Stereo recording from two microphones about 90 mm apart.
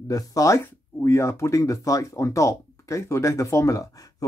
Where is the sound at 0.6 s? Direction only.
25° left (ahead or behind).